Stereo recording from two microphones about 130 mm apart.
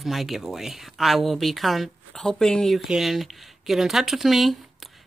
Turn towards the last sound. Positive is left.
turn(degrees=0)  # may be behind; listen again after turning